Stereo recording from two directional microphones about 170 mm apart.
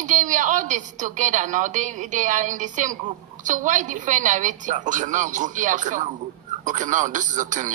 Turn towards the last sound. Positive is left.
turn(degrees=-50)  # may be behind; listen again after turning